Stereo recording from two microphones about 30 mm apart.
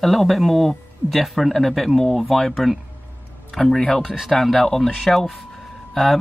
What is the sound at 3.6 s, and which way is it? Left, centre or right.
Speech, centre.